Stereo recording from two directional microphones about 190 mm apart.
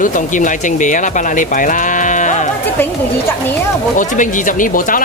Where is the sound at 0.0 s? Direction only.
45° left (ahead or behind).